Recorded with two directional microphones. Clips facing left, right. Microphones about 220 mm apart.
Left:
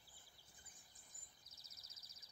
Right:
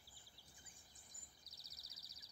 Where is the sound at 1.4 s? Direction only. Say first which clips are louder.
Right 2 dB; 35° right (ahead or behind).